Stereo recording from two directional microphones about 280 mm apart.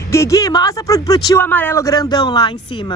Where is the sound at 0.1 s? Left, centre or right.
Centre.